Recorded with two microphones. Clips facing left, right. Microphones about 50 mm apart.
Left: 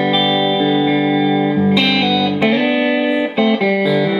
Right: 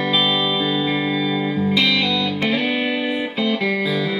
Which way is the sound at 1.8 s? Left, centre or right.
Centre.